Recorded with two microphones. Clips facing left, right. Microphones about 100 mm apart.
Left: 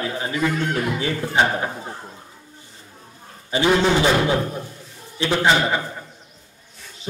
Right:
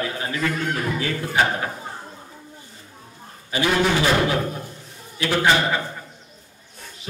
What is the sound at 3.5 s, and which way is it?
A man's voice, 25° left (ahead or behind).